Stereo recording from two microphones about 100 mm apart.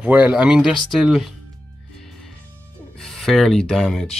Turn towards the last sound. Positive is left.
turn(degrees=5)  # may be behind; listen again after turning